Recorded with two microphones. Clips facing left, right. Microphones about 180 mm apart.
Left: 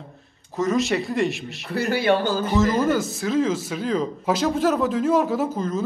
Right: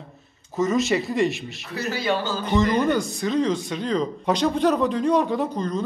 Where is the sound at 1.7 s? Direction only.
60° left (ahead or behind).